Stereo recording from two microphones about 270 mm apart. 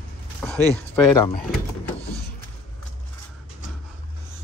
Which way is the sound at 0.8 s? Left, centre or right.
Centre.